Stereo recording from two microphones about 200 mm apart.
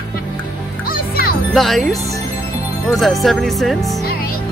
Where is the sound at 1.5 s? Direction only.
Centre (ahead or behind).